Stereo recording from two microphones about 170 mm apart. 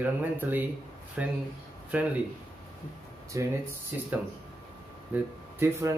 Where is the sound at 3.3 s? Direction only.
15° right (ahead or behind).